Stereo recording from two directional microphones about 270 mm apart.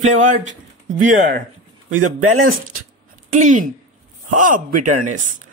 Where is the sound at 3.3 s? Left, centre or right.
Right.